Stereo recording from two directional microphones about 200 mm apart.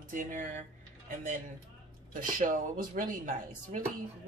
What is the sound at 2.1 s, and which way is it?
Speech, 40° right (ahead or behind).